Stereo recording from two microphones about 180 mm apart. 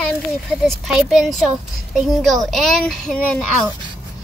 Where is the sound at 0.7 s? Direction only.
Centre (ahead or behind).